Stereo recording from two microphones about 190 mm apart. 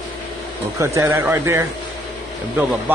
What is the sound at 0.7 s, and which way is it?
Speech, 15° right (ahead or behind).